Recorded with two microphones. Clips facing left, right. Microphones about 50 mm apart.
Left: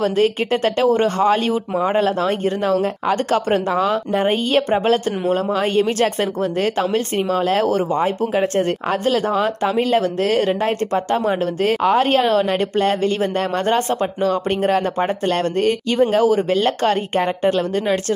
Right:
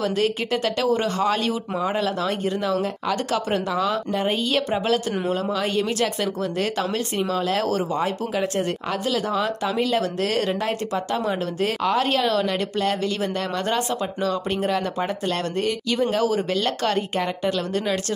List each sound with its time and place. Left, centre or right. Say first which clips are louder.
0.0 s speech: left 5 dB; left